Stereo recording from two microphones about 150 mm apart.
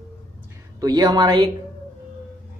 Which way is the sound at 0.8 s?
25° right (ahead or behind).